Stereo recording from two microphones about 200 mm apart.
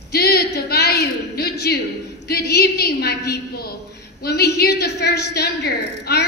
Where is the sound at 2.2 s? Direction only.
55° left (ahead or behind).